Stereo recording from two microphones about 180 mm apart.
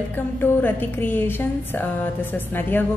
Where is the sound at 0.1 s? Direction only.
10° left (ahead or behind).